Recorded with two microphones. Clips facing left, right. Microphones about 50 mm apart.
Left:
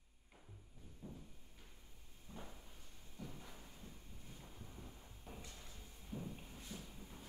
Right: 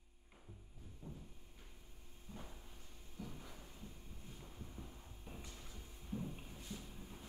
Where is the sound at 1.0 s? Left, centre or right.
Centre.